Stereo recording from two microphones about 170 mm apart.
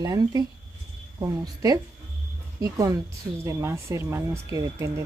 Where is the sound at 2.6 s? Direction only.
20° right (ahead or behind).